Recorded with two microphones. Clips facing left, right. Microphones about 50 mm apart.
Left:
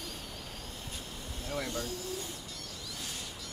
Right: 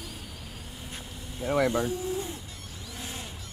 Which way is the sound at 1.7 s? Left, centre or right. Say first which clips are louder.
Right 9 dB; right.